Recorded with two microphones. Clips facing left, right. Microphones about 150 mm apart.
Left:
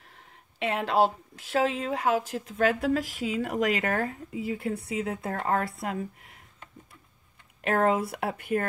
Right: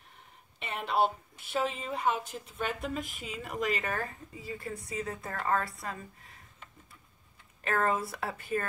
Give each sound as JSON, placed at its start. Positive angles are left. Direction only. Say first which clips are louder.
{"t": 0.1, "sound": "a woman's voice", "louder": "left 2 dB", "side_deg": 90}
{"t": 7.6, "sound": "speech", "louder": "left 5 dB", "side_deg": 65}